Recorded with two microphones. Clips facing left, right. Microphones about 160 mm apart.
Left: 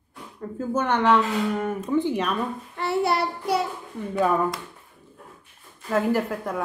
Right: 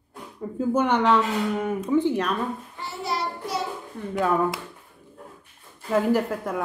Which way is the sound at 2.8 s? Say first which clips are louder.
Left 8 dB; 65° left (ahead or behind).